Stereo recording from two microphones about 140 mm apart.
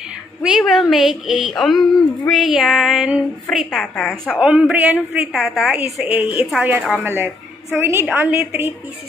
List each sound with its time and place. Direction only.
0.4 s a woman's voice: 5° right (ahead or behind)
4.4 s a woman's voice: 10° right (ahead or behind)
5.3 s a woman's voice: centre (ahead or behind)
6.0 s a woman's voice: 10° right (ahead or behind)